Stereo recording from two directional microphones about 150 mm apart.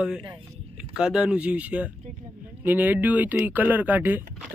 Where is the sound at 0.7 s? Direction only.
5° right (ahead or behind).